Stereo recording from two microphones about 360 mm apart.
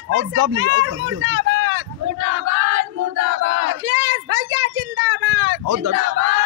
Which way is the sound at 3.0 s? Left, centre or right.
Right.